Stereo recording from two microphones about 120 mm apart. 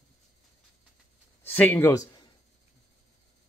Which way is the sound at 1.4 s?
15° left (ahead or behind).